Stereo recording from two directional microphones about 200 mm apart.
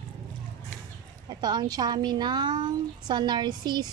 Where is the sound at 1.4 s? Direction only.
20° right (ahead or behind).